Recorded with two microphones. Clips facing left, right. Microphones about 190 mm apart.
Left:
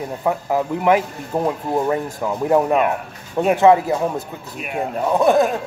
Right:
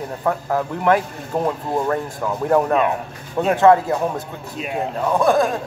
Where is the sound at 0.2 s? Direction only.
10° left (ahead or behind).